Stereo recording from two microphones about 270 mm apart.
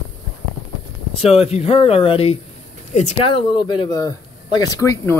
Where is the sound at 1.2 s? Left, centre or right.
Left.